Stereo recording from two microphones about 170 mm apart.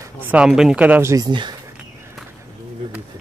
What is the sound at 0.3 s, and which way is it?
Speech, 5° right (ahead or behind).